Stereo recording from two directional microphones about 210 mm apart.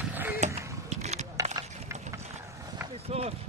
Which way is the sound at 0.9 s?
30° right (ahead or behind).